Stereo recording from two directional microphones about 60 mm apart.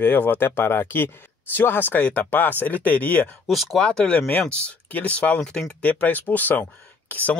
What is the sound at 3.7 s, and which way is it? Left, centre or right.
Speech, centre.